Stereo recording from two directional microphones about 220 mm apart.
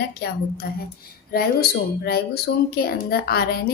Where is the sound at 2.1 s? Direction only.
45° left (ahead or behind).